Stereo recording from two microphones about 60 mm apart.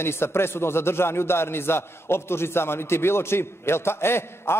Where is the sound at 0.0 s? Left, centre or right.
Left.